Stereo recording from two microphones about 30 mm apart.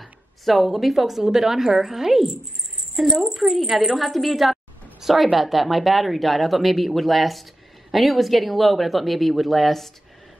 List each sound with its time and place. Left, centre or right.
0.0 s a woman's voice: centre